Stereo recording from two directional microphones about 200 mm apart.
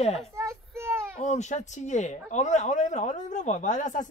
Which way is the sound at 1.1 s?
35° left (ahead or behind).